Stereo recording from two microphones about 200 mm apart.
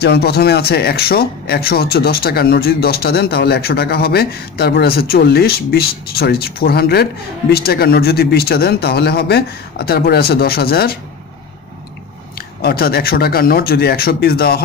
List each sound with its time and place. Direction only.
0.0 s speech: 55° left (ahead or behind)
12.4 s speech: 50° left (ahead or behind)